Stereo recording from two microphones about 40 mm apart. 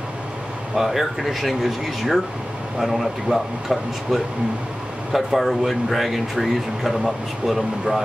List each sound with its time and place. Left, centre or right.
0.7 s speech: centre